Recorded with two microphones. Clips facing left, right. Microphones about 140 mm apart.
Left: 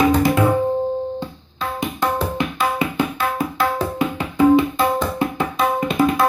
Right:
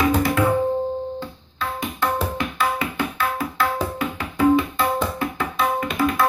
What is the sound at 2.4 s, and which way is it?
Tabla, 20° left (ahead or behind).